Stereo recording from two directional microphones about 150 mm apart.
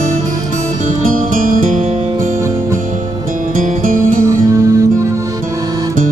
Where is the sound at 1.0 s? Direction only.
65° right (ahead or behind).